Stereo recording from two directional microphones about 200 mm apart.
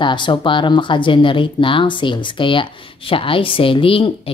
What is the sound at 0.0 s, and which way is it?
A woman's voice, 25° left (ahead or behind).